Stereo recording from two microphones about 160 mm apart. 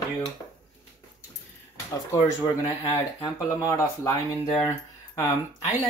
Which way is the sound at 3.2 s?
20° left (ahead or behind).